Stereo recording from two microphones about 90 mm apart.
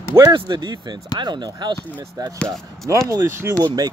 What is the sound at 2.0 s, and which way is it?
Speech, 40° right (ahead or behind).